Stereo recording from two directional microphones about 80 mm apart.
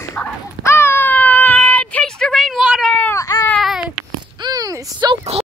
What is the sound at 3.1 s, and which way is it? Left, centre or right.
Baby cry, left.